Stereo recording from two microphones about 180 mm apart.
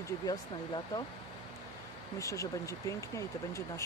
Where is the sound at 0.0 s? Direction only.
20° left (ahead or behind).